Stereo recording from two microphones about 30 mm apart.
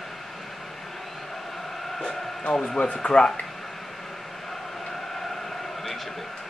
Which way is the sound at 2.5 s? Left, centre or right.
Left.